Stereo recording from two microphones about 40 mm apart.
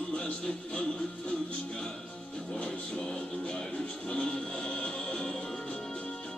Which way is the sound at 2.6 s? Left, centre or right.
Left.